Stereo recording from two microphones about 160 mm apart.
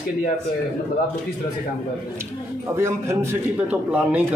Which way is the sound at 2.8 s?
15° right (ahead or behind).